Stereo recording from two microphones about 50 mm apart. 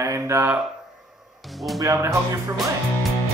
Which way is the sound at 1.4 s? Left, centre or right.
Centre.